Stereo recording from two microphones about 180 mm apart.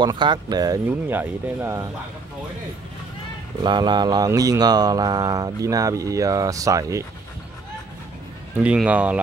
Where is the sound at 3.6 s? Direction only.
25° right (ahead or behind).